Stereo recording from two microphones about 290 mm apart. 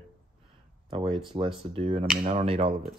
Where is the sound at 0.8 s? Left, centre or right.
Centre.